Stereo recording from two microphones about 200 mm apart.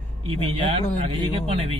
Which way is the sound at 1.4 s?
30° right (ahead or behind).